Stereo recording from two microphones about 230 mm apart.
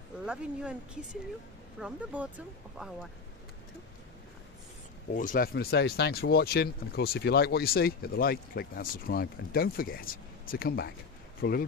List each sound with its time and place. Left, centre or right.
0.2 s speech: centre
1.8 s speech: centre
5.1 s speech: left
11.4 s speech: left